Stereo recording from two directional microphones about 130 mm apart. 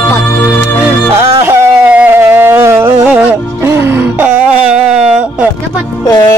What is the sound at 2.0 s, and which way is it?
Music, 15° right (ahead or behind).